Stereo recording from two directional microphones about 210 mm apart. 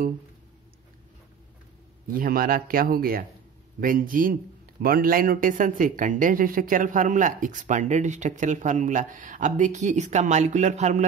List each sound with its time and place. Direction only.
2.0 s speech: 45° right (ahead or behind)